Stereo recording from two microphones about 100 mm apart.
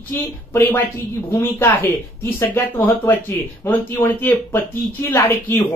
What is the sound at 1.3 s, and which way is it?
Speech, 25° left (ahead or behind).